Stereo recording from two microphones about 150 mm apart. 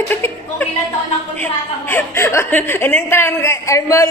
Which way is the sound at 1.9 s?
15° left (ahead or behind).